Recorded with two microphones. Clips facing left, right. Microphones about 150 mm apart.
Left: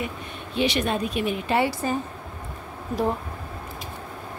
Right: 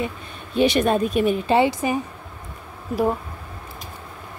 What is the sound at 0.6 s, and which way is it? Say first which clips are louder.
Speech: right 6 dB; 45° right (ahead or behind).